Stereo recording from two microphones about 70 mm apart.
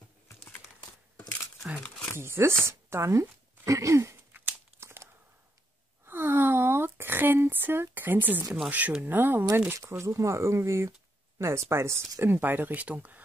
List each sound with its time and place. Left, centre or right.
2.1 s speech: right
4.7 s a sound: right
8.6 s speech: right
9.8 s speech: right